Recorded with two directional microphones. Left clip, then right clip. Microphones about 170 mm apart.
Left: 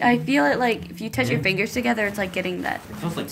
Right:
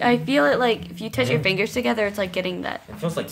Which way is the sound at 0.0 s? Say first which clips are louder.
Right 1 dB; 10° right (ahead or behind).